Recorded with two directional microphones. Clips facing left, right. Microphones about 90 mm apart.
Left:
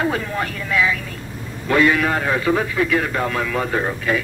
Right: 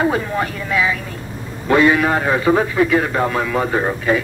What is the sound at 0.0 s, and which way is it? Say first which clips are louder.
A woman's voice: right 3 dB; 20° right (ahead or behind).